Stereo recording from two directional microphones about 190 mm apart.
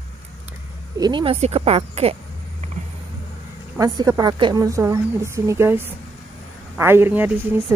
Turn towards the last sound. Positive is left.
turn(degrees=-10)  # may be behind; listen again after turning